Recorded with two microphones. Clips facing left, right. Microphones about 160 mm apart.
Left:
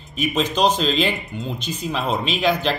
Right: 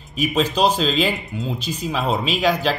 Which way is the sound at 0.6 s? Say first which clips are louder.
Left 1 dB; 10° right (ahead or behind).